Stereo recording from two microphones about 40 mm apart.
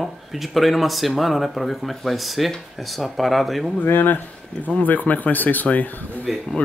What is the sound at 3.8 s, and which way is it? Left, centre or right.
Speech, left.